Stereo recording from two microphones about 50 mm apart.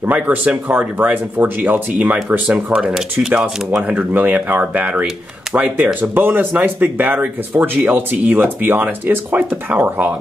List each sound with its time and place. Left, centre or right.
0.1 s speech: right
2.4 s speech: centre
3.8 s speech: right